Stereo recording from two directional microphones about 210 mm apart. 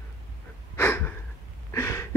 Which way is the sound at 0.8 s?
10° left (ahead or behind).